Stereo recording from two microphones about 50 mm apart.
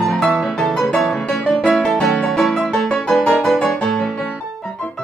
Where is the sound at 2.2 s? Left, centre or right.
Centre.